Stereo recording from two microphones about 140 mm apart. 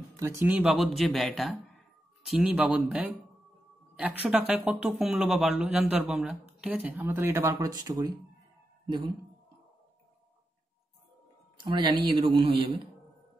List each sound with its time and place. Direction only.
0.2 s speech: 20° right (ahead or behind); by 9.1 s 35° right (ahead or behind)
11.6 s speech: 35° right (ahead or behind)